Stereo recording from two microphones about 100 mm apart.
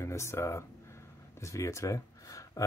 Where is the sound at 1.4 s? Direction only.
30° left (ahead or behind).